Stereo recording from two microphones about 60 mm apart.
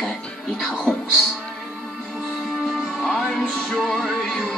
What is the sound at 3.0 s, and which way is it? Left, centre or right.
Music, centre.